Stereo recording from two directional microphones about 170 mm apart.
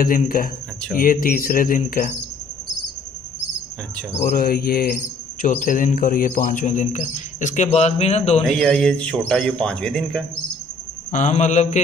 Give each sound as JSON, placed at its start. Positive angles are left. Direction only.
{"t": 0.0, "sound": "speech", "side_deg": 55}
{"t": 4.2, "sound": "speech", "side_deg": 60}
{"t": 8.4, "sound": "a man's voice", "side_deg": 5}
{"t": 11.1, "sound": "speech", "side_deg": 45}